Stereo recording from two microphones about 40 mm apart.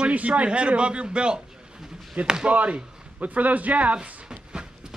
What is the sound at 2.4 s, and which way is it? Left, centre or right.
Speech, right.